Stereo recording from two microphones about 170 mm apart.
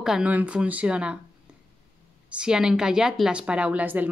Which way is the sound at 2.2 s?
5° right (ahead or behind).